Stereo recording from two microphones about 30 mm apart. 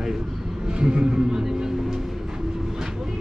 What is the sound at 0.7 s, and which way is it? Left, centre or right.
Speech, right.